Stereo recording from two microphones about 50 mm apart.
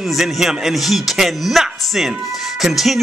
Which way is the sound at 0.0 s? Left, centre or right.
Centre.